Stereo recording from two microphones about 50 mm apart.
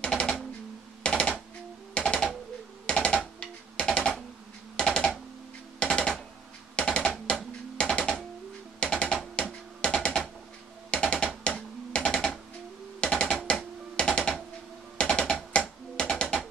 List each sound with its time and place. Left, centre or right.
0.0 s a sound: centre
2.0 s typewriter: centre
3.2 s music: centre
4.7 s typing: centre
5.8 s music: centre
9.3 s a sound: left
10.9 s music: centre
11.4 s typing: left
13.0 s music: centre
13.5 s a sound: centre
15.0 s music: centre
15.5 s typing: left
16.1 s music: centre